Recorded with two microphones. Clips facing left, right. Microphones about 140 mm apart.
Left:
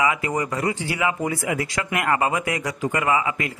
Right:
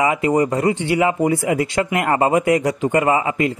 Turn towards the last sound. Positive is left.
turn(degrees=-30)  # may be behind; listen again after turning